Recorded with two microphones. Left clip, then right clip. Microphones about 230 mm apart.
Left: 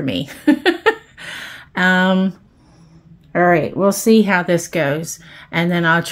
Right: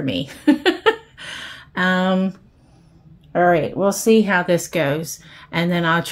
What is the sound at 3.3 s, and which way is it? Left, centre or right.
A woman's voice, left.